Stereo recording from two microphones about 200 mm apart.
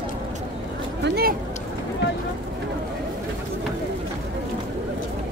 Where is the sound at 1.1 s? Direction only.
50° right (ahead or behind).